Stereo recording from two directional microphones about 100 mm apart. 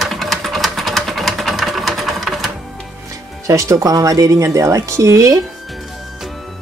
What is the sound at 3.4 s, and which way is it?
Speech, 35° right (ahead or behind).